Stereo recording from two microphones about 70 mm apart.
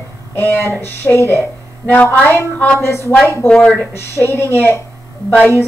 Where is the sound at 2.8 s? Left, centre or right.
Left.